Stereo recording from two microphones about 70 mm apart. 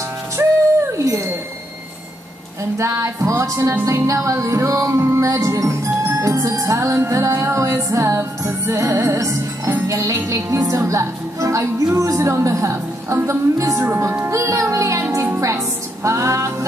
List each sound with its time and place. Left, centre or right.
0.4 s a sound: right
2.8 s music: right
13.8 s speech: right
14.3 s music: right